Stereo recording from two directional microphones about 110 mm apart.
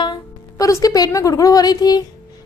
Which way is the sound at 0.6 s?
30° left (ahead or behind).